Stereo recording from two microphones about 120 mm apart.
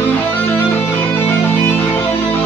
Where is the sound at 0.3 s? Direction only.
20° left (ahead or behind).